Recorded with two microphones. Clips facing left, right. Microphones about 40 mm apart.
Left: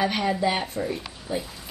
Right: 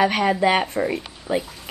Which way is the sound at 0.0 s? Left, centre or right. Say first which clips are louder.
Right 5 dB; right.